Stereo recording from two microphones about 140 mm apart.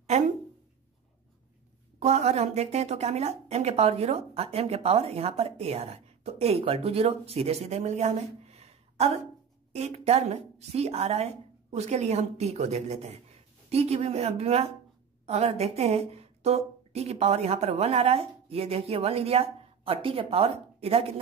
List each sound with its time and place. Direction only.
2.0 s a woman's voice: 55° right (ahead or behind)